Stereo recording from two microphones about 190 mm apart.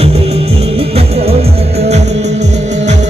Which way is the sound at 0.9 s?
35° right (ahead or behind).